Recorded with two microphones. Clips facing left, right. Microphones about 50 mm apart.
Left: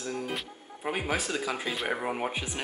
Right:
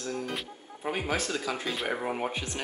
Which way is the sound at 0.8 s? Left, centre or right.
Centre.